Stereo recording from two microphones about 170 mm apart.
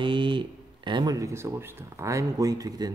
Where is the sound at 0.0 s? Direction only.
30° right (ahead or behind).